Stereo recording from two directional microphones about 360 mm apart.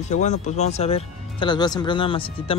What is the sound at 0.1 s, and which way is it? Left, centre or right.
Speech, centre.